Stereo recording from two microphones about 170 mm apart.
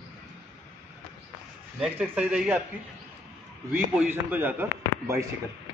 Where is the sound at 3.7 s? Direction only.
10° right (ahead or behind).